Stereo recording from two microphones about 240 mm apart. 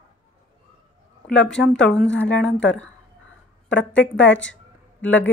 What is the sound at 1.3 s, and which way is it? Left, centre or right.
A woman's voice, centre.